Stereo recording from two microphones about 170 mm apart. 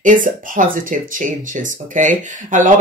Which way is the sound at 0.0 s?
50° right (ahead or behind).